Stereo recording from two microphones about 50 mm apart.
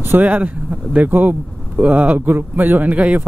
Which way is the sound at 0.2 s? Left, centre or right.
Right.